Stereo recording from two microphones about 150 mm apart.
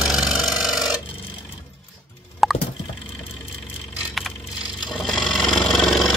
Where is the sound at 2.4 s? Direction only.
Centre (ahead or behind).